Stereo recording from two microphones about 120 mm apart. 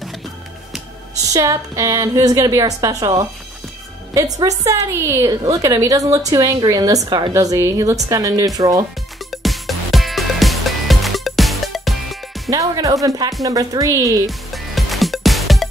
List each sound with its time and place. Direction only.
1.3 s a woman's voice: 30° right (ahead or behind)
4.1 s a woman's voice: 30° right (ahead or behind)
9.3 s music: centre (ahead or behind)
12.4 s a woman's voice: 30° right (ahead or behind)
14.2 s music: centre (ahead or behind)